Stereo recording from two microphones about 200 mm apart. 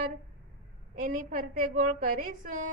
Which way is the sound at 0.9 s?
40° right (ahead or behind).